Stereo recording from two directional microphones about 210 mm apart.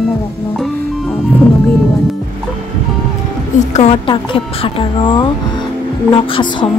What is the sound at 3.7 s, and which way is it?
A woman's voice, 30° left (ahead or behind).